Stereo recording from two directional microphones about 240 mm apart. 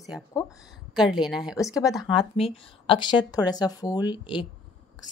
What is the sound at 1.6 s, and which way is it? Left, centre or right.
A woman's voice, centre.